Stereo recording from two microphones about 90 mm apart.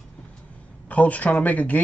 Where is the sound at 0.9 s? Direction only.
15° left (ahead or behind).